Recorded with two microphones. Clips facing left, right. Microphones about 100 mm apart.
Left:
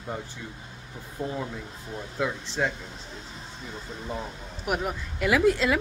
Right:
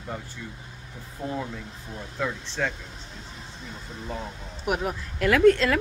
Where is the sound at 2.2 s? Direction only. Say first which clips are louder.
Left 1 dB; 10° left (ahead or behind).